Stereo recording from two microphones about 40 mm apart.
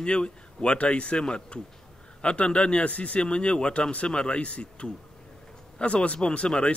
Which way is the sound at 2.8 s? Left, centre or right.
Left.